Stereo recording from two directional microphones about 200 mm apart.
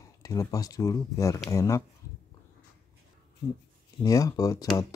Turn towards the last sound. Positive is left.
turn(degrees=15)  # may be behind; listen again after turning